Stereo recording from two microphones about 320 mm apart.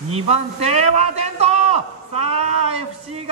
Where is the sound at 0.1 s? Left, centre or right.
Centre.